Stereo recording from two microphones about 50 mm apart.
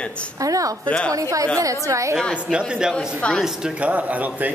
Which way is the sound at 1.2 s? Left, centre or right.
Right.